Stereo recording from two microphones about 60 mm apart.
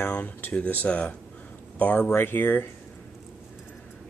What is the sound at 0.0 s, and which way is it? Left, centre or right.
Speech, left.